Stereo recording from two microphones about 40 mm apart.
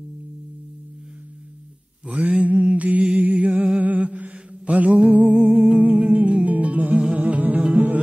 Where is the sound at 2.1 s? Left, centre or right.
Right.